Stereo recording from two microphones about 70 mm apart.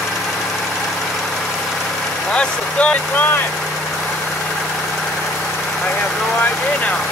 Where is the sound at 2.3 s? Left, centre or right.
Centre.